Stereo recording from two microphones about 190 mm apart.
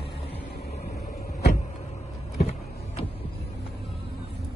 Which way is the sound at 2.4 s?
35° left (ahead or behind).